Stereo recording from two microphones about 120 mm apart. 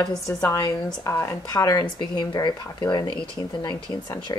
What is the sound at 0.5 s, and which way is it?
Speech, 30° left (ahead or behind).